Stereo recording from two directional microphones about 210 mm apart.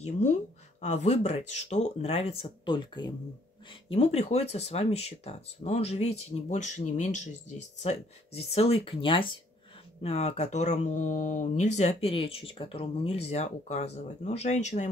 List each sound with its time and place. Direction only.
0.0 s speech: 30° left (ahead or behind)